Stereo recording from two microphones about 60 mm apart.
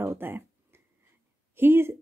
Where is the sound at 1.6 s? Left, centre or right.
Right.